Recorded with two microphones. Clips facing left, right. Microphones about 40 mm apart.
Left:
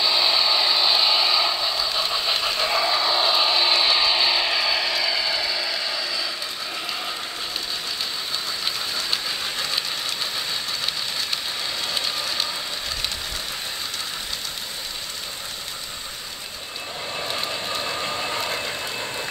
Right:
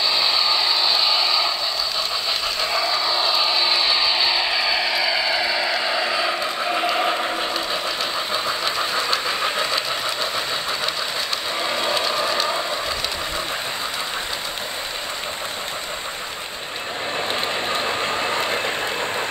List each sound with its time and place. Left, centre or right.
0.0 s mechanisms: centre; by 7.2 s right
8.9 s train: right
11.7 s a sound: right
17.2 s train: right